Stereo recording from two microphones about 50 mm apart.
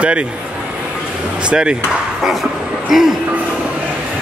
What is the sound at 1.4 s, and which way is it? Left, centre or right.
Speech, centre.